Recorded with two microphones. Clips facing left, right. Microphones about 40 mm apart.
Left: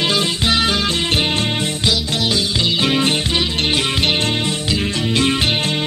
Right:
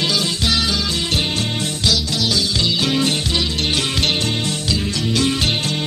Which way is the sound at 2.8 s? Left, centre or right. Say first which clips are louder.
Left 3 dB; left.